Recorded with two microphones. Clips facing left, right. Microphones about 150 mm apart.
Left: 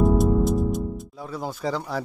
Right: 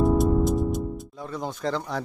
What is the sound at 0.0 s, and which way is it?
Speech, centre (ahead or behind).